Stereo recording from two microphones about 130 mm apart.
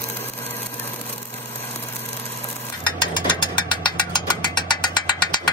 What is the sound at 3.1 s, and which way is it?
Mechanisms, 35° left (ahead or behind).